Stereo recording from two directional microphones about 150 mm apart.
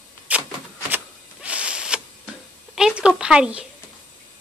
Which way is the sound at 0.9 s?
10° right (ahead or behind).